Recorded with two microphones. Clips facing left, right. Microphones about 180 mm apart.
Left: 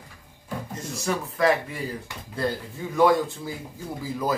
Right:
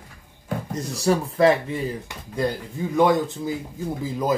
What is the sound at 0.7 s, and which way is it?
Speech, 35° right (ahead or behind).